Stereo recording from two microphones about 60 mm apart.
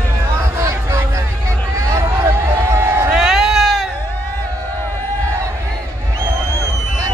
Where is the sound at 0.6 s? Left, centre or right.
Right.